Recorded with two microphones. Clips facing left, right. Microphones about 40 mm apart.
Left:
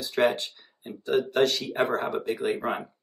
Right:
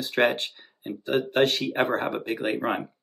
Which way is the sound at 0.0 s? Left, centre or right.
Right.